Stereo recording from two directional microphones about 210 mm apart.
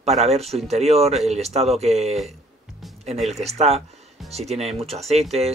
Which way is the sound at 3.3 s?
30° right (ahead or behind).